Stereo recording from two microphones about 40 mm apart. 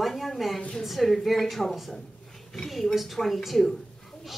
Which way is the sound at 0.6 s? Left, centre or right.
Left.